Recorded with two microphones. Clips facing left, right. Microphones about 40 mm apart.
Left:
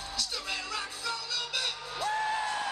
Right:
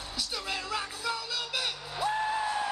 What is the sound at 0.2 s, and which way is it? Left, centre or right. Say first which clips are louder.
Music: right 2 dB; centre.